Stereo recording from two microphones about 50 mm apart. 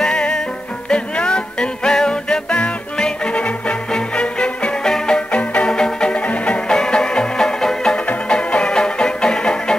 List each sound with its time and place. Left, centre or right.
0.0 s music: centre
5.3 s music: left
5.7 s music: centre
6.7 s music: centre